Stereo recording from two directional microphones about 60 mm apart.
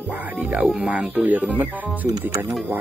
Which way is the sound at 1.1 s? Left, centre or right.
Right.